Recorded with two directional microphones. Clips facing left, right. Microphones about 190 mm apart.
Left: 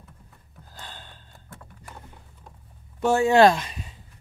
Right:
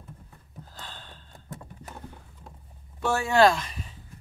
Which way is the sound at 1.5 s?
20° right (ahead or behind).